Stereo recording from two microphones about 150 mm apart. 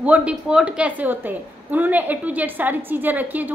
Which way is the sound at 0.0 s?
10° right (ahead or behind).